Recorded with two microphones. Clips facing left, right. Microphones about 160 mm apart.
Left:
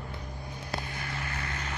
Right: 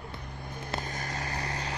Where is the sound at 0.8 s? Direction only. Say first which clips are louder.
Right 2 dB; 40° right (ahead or behind).